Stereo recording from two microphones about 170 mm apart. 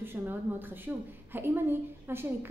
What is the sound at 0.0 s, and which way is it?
A woman's voice, 10° right (ahead or behind).